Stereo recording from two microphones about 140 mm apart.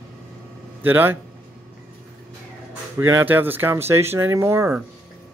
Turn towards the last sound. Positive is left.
turn(degrees=-15)  # may be behind; listen again after turning